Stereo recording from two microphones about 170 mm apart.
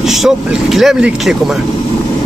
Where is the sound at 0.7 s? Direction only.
Centre (ahead or behind).